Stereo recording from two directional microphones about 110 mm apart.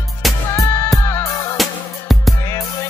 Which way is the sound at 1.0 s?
25° left (ahead or behind).